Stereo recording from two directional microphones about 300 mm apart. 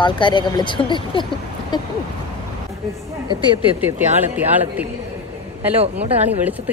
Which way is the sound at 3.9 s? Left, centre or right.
Centre.